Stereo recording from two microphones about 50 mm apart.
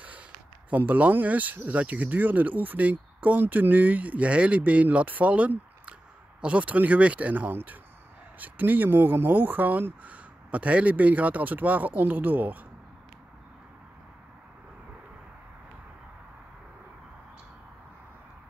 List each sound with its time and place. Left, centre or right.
0.7 s speech: right